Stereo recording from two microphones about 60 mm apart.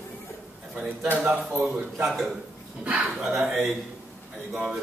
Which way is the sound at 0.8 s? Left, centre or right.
Right.